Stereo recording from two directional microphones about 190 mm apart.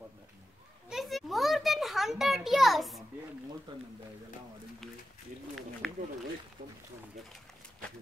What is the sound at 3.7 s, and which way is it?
Speech, 25° right (ahead or behind).